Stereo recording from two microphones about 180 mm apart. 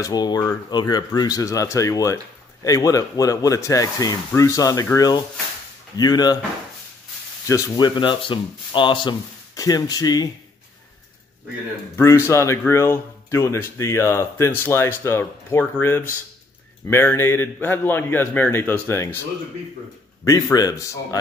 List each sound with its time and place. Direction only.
0.0 s speech: 20° left (ahead or behind)
7.4 s speech: 20° left (ahead or behind)
12.0 s speech: 15° left (ahead or behind)
20.2 s speech: 20° left (ahead or behind)